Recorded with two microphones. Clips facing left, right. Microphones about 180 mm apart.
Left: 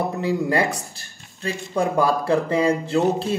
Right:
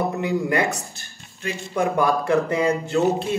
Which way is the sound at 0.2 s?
30° left (ahead or behind).